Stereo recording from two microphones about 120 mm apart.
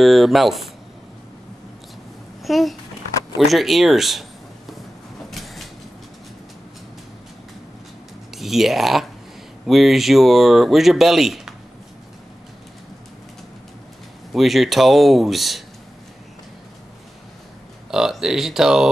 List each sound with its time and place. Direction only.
0.0 s speech: centre (ahead or behind)
2.4 s a man's voice: centre (ahead or behind)
5.3 s a sound: centre (ahead or behind)
8.3 s speech: centre (ahead or behind)
14.3 s speech: centre (ahead or behind)
17.9 s speech: 5° right (ahead or behind)